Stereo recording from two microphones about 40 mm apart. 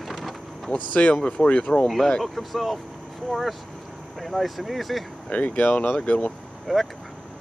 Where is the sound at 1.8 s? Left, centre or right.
Centre.